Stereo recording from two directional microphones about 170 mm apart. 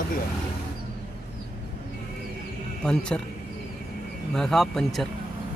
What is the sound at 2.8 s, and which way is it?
Speech, 5° left (ahead or behind).